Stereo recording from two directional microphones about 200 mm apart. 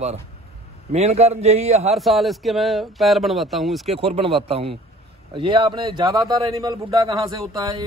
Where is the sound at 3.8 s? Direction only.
30° right (ahead or behind).